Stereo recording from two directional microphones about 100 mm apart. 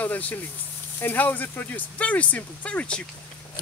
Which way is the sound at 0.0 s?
15° left (ahead or behind).